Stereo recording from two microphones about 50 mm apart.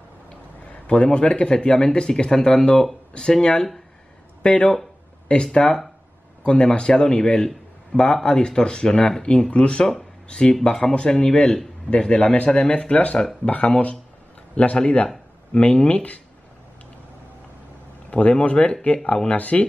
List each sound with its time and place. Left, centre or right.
0.7 s a man's voice: left
18.1 s speech: left